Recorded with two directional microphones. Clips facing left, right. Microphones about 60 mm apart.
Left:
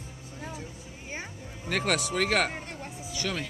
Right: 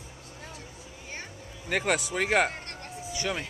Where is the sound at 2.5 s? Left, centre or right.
Centre.